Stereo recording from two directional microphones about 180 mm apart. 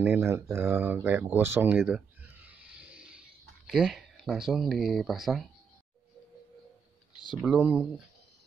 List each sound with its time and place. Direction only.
0.0 s speech: 10° right (ahead or behind)
1.8 s a sound: 5° right (ahead or behind)
7.4 s speech: 5° right (ahead or behind)